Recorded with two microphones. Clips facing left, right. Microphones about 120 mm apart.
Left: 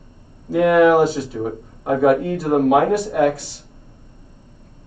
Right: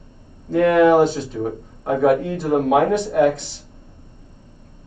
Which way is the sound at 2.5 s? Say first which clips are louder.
Left 2 dB; 50° left (ahead or behind).